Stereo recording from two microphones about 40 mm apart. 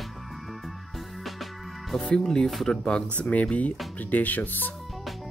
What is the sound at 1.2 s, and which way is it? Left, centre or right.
Music, centre.